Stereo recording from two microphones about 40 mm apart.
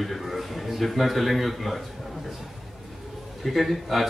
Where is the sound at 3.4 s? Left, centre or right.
Centre.